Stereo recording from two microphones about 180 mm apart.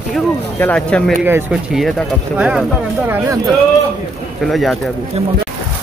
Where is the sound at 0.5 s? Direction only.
10° left (ahead or behind).